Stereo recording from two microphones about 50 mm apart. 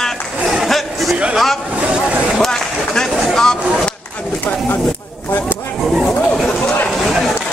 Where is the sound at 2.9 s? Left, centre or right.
Centre.